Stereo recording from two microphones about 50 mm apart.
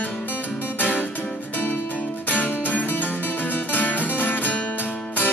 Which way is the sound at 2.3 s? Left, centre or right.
Left.